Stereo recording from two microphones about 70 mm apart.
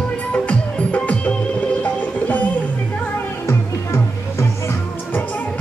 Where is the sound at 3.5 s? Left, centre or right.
Left.